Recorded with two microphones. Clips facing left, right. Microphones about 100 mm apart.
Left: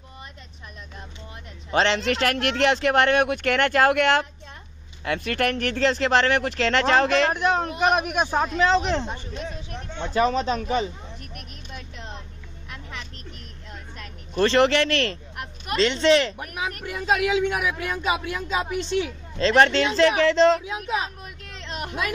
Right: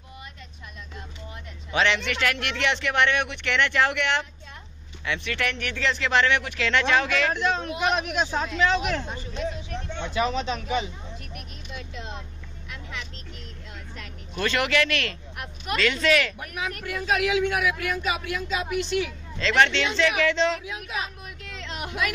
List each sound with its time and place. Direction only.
1.7 s speech: 35° left (ahead or behind)
9.9 s speech: 40° left (ahead or behind)
14.3 s speech: 35° left (ahead or behind)